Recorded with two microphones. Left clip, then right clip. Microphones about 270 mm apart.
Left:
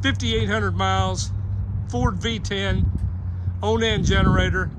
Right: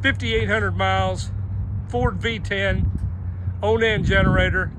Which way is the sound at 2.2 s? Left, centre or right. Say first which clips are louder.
Right 3 dB; centre.